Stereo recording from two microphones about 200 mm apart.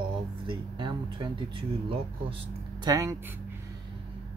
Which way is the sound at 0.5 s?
25° right (ahead or behind).